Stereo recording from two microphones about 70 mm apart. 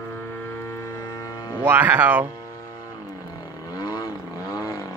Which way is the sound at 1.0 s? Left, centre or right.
Left.